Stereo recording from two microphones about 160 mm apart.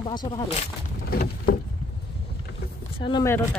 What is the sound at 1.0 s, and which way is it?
Patter, 70° left (ahead or behind).